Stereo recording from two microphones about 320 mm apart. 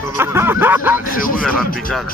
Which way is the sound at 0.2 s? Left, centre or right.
Centre.